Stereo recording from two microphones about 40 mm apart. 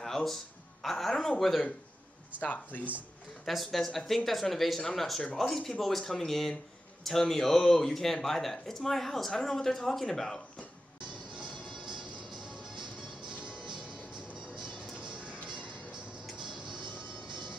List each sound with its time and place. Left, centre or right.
0.0 s a sound: centre
0.8 s speech: centre
2.4 s speech: left
3.4 s speech: centre
11.3 s music: centre
13.4 s music: centre